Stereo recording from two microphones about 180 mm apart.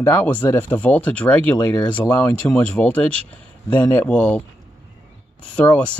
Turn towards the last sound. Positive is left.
turn(degrees=10)  # may be behind; listen again after turning